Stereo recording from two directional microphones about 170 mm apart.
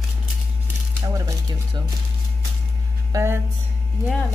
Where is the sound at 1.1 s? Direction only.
20° right (ahead or behind).